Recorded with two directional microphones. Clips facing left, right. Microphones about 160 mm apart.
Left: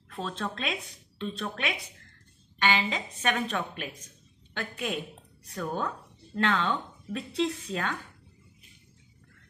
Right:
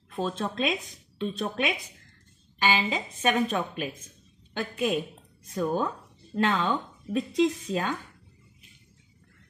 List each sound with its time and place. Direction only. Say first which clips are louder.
0.2 s speech: right 5 dB; 15° right (ahead or behind)
2.6 s speech: right 1 dB; 10° right (ahead or behind)
3.2 s speech: right 5 dB; 20° right (ahead or behind)